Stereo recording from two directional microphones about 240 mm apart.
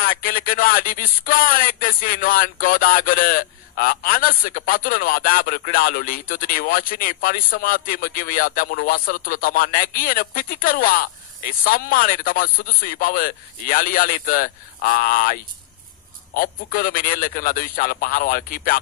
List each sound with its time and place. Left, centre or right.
0.0 s speech: left